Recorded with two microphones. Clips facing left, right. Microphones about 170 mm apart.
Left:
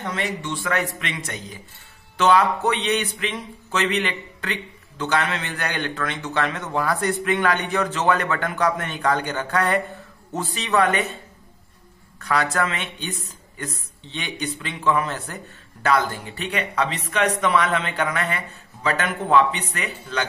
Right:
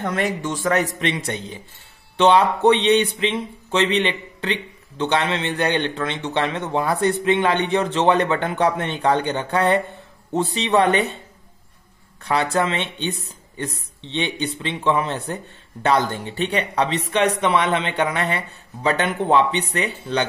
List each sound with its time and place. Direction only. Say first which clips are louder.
0.0 s a man's voice: right 5 dB; 50° right (ahead or behind); by 11.1 s 30° right (ahead or behind)
12.2 s speech: right 2 dB; 30° right (ahead or behind)